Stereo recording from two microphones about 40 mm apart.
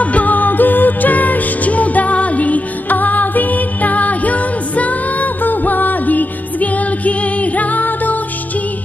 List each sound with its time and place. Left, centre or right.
0.0 s music: left